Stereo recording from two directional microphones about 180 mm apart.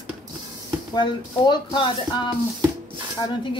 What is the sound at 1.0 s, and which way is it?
Speech, 25° left (ahead or behind).